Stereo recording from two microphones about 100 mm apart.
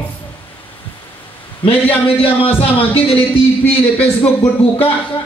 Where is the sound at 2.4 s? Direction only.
65° left (ahead or behind).